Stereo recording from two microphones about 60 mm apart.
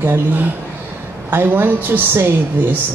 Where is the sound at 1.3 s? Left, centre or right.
Right.